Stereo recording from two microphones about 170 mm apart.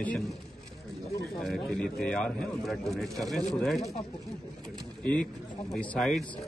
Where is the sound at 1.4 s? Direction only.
Centre (ahead or behind).